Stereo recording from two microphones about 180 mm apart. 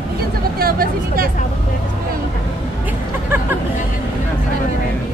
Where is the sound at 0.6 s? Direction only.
55° right (ahead or behind).